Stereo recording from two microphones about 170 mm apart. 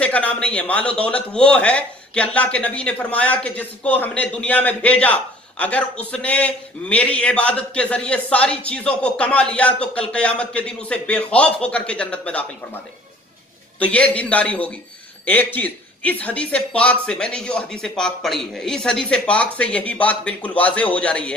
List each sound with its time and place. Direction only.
0.0 s speech: 10° left (ahead or behind)
13.7 s speech: 10° left (ahead or behind)